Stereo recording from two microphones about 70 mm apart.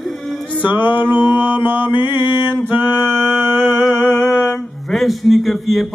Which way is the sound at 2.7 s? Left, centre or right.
Right.